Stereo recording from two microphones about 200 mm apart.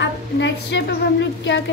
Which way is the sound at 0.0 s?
65° left (ahead or behind).